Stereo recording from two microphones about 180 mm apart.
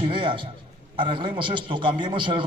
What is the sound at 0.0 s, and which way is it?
A man's voice, 30° right (ahead or behind).